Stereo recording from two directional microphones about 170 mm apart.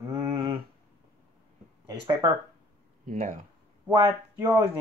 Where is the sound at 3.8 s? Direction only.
15° right (ahead or behind).